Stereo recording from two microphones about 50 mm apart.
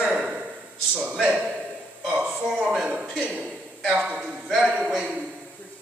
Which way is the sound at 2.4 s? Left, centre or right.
Centre.